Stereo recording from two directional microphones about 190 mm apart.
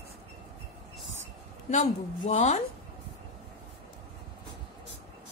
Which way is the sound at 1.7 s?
35° left (ahead or behind).